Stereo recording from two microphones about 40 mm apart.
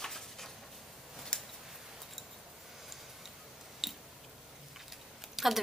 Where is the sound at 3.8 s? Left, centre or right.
Centre.